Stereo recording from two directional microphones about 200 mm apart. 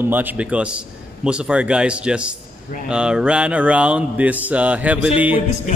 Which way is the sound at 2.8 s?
5° right (ahead or behind).